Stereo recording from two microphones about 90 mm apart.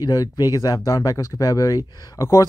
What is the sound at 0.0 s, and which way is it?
Speech, 45° left (ahead or behind).